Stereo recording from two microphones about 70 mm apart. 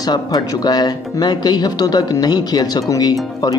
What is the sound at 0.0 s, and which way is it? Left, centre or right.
Speech, left.